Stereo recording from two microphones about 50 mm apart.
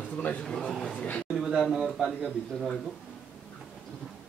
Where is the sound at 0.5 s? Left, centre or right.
Centre.